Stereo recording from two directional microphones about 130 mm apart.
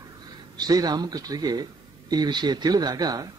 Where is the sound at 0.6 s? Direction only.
30° right (ahead or behind).